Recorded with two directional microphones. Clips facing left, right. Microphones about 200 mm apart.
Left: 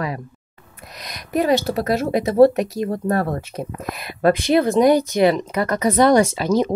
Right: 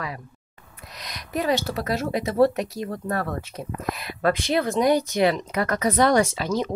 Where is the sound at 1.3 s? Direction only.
55° left (ahead or behind).